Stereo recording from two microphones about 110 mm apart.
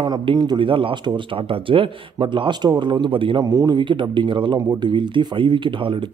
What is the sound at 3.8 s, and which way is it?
A man's voice, 45° right (ahead or behind).